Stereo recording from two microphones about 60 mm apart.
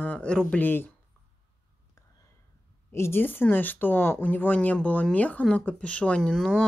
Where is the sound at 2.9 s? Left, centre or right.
Left; by 6.3 s centre.